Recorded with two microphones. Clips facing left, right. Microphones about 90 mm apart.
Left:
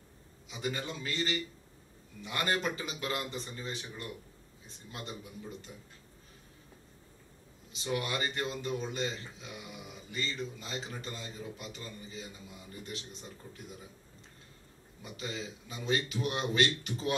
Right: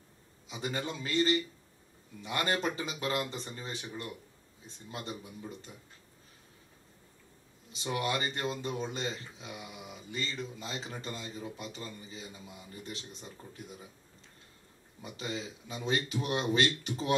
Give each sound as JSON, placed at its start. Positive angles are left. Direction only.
{"t": 0.5, "sound": "speech", "side_deg": -30}
{"t": 2.5, "sound": "speech", "side_deg": -30}
{"t": 7.8, "sound": "speech", "side_deg": -30}
{"t": 15.0, "sound": "speech", "side_deg": -30}